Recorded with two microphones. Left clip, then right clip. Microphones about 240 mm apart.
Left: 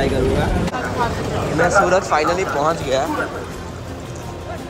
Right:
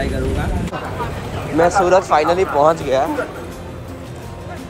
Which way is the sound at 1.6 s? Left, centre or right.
Centre.